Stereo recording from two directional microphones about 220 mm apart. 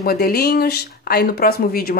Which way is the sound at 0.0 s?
45° left (ahead or behind).